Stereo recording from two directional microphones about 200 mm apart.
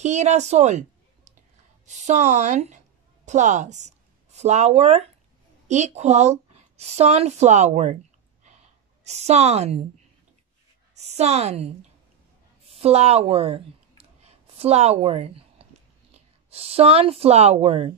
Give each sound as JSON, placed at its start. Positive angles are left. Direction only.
{"t": 0.0, "sound": "a woman's voice", "side_deg": -35}
{"t": 9.0, "sound": "speech", "side_deg": -35}
{"t": 11.0, "sound": "a woman's voice", "side_deg": -35}
{"t": 12.6, "sound": "a sound", "side_deg": -30}
{"t": 16.1, "sound": "speech", "side_deg": -30}